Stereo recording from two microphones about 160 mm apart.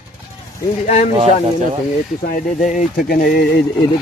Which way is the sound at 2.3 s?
50° left (ahead or behind).